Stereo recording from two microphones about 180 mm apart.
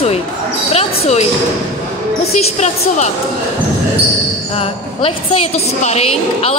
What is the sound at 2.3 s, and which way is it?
Speech, 35° left (ahead or behind).